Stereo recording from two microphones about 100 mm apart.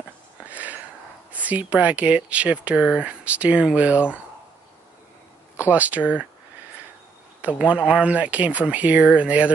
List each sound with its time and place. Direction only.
0.5 s a sound: 15° right (ahead or behind)
1.3 s speech: 15° right (ahead or behind)
5.6 s speech: 15° right (ahead or behind)
7.4 s speech: 15° right (ahead or behind)